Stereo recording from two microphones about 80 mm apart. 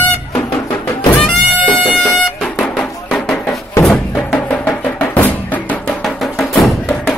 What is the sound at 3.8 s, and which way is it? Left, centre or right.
Music, centre.